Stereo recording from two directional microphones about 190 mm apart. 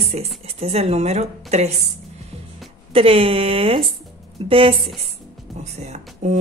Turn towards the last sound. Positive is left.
turn(degrees=-40)  # may be behind; listen again after turning